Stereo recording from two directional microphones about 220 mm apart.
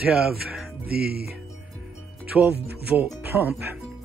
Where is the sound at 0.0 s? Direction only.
5° right (ahead or behind).